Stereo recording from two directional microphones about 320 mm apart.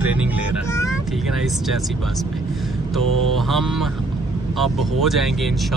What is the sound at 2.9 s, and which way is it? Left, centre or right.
Speech, centre.